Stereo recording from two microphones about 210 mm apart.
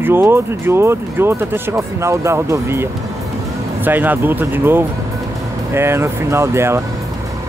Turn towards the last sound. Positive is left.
turn(degrees=-10)  # may be behind; listen again after turning